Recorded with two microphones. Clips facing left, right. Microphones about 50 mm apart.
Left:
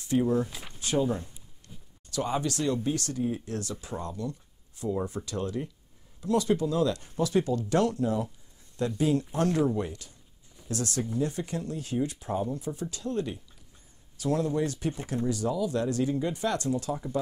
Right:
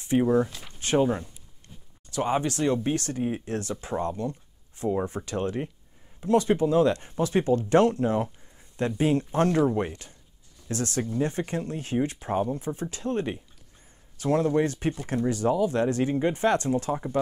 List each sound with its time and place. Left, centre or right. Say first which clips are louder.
0.0 s speech: right 4 dB; right
0.5 s speech: left 1 dB; centre
0.7 s speech: right 4 dB; right